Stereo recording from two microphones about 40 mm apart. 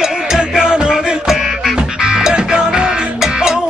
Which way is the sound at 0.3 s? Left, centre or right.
Centre.